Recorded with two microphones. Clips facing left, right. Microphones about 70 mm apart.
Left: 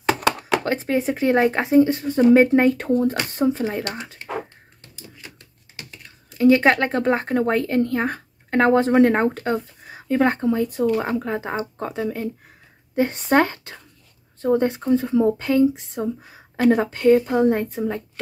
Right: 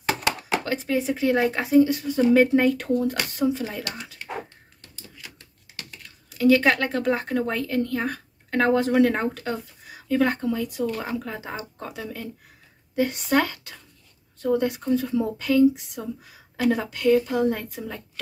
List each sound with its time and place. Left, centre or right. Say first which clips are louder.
0.7 s speech: left 1 dB; left
6.0 s speech: left 3 dB; left